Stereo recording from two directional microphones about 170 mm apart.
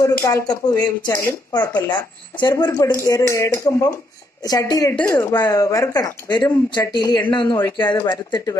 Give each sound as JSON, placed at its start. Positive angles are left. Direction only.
{"t": 0.0, "sound": "speech", "side_deg": 20}